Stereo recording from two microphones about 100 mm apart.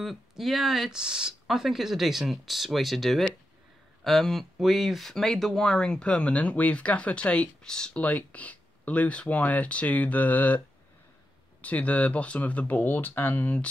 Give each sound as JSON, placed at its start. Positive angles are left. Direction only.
{"t": 0.0, "sound": "speech", "side_deg": 0}
{"t": 11.6, "sound": "speech", "side_deg": 15}